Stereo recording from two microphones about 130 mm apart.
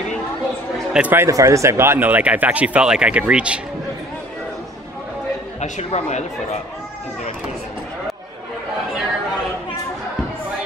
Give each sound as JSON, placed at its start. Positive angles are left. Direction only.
{"t": 0.9, "sound": "speech", "side_deg": -15}
{"t": 5.6, "sound": "a man's voice", "side_deg": 55}